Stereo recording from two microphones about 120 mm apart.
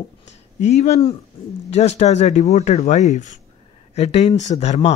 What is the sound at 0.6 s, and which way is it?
Speech, 70° left (ahead or behind).